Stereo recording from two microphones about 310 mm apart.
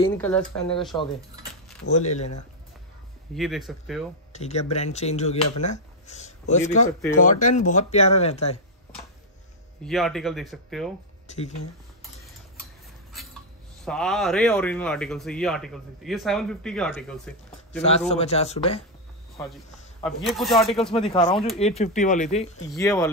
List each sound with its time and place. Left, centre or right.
0.0 s speech: centre
1.9 s speech: left
3.3 s speech: centre
4.3 s speech: left
9.8 s speech: centre
11.2 s speech: left
13.1 s a sound: centre
13.8 s speech: centre
17.8 s speech: centre
19.3 s speech: centre
21.2 s speech: centre
22.7 s speech: centre